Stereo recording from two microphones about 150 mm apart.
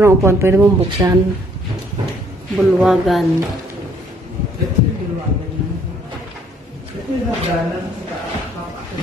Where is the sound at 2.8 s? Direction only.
Centre (ahead or behind).